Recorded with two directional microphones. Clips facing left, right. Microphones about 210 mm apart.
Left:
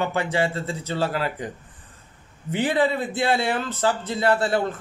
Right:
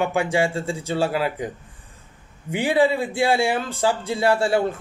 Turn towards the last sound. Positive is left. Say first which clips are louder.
# right 2 dB
turn(degrees=-10)  # may be behind; listen again after turning